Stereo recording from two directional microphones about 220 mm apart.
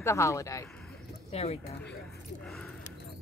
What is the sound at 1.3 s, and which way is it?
Speech, 30° left (ahead or behind).